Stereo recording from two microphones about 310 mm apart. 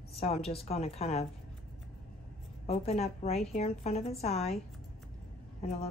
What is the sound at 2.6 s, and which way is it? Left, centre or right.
Speech, centre.